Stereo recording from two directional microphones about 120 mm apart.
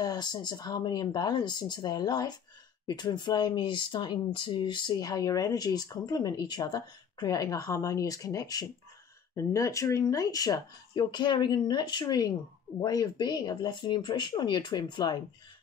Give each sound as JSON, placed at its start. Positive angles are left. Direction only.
{"t": 0.0, "sound": "speech", "side_deg": 35}